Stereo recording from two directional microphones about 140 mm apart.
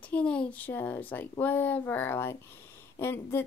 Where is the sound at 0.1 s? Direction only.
10° left (ahead or behind).